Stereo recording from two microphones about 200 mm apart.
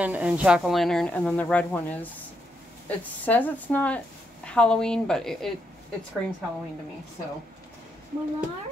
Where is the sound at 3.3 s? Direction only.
10° left (ahead or behind).